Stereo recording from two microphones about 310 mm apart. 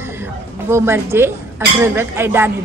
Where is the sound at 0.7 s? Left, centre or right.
Centre.